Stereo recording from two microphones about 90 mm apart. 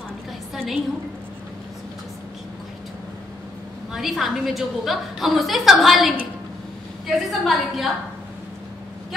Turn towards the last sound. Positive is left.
turn(degrees=0)  # may be behind; listen again after turning